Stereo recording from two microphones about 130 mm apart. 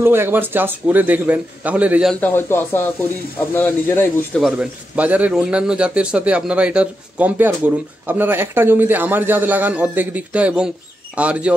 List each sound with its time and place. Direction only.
0.0 s a man's voice: 15° right (ahead or behind)
2.1 s speech: 15° left (ahead or behind)
4.4 s a man's voice: centre (ahead or behind)
4.9 s a man's voice: 10° right (ahead or behind)